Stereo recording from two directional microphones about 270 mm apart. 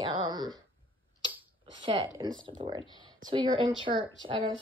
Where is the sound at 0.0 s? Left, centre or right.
Centre.